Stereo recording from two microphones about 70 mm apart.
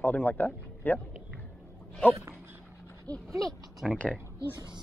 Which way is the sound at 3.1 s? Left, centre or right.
Right.